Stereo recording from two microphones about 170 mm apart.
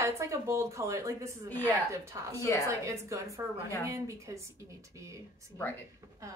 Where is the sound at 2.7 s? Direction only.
15° right (ahead or behind).